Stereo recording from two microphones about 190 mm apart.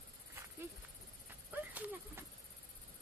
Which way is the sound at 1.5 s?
10° right (ahead or behind).